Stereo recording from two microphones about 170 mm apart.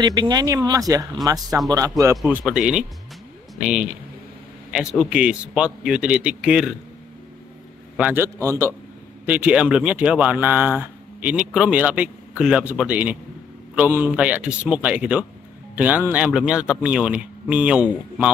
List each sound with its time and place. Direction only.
0.0 s speech: 25° right (ahead or behind); by 6.7 s 5° right (ahead or behind)
8.0 s speech: 10° right (ahead or behind)